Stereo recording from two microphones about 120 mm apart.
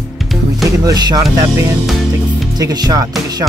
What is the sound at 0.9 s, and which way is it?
Speech, 30° right (ahead or behind).